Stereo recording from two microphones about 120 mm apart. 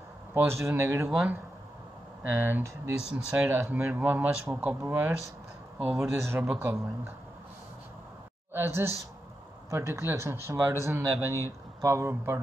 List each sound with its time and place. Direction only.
0.3 s speech: 20° right (ahead or behind)
2.2 s speech: 15° right (ahead or behind)
3.0 s speech: 60° left (ahead or behind)
3.3 s speech: 20° right (ahead or behind)
8.5 s speech: 20° right (ahead or behind)